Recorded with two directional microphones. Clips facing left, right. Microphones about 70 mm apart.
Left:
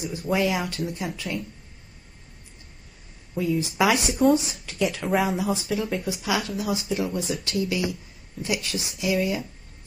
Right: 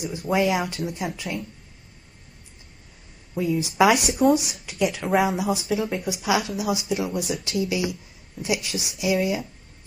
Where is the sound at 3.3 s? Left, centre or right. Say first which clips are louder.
Right 1 dB; centre.